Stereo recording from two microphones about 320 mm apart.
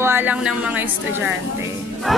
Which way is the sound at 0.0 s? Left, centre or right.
Centre.